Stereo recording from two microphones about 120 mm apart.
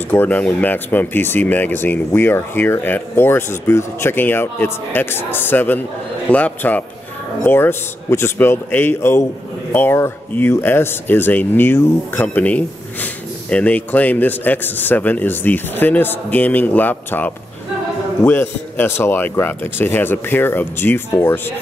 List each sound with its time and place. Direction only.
0.1 s a man's voice: 15° left (ahead or behind)